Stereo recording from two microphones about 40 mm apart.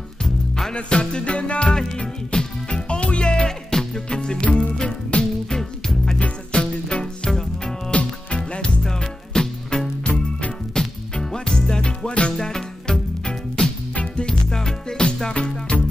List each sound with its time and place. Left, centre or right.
0.2 s music: centre
0.7 s music: left
5.6 s music: centre
6.1 s music: left
7.2 s music: centre
7.9 s music: left
10.0 s music: left
10.7 s music: centre
12.1 s music: left
12.4 s music: centre
15.3 s music: left